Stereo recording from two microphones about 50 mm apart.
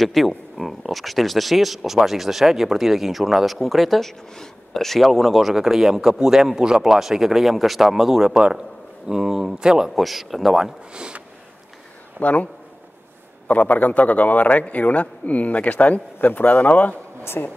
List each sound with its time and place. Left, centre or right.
0.0 s speech: centre
9.9 s speech: centre
10.9 s speech: centre
12.2 s speech: left
13.5 s a man's voice: left
17.4 s a woman's voice: left